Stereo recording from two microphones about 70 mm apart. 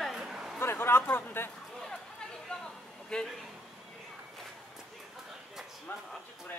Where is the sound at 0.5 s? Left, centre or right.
Left.